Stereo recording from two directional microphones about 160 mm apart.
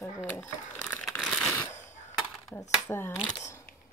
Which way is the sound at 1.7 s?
50° left (ahead or behind).